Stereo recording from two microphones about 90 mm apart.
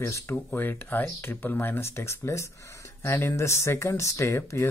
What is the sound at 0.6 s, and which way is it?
Speech, 20° left (ahead or behind).